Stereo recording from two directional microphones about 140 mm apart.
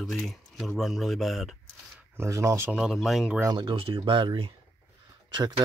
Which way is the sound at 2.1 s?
20° right (ahead or behind).